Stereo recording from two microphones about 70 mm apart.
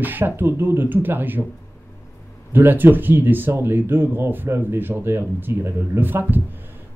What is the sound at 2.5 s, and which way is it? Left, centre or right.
Speech, right.